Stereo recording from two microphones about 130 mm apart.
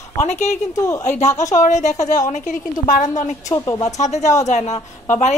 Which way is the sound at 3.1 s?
25° left (ahead or behind).